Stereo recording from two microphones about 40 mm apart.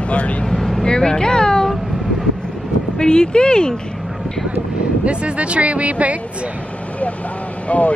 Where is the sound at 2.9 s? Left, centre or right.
Left.